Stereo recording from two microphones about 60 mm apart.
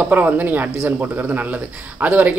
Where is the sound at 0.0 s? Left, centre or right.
Right.